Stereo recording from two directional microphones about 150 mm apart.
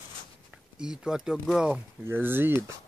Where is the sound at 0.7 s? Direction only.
5° right (ahead or behind).